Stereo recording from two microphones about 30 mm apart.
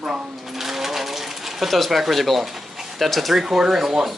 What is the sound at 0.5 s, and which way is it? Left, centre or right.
Sewing machine, centre.